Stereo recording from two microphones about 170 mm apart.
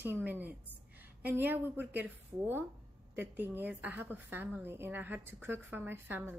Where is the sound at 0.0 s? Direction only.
10° right (ahead or behind).